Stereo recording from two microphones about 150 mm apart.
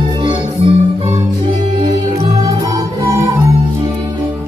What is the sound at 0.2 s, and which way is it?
Music, 35° right (ahead or behind).